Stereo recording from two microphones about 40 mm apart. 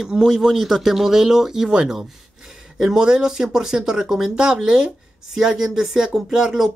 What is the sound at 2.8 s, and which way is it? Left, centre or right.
Speech, centre.